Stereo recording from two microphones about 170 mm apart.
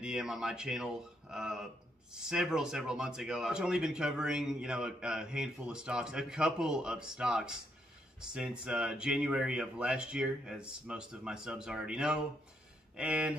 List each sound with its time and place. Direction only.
0.0 s speech: 5° right (ahead or behind)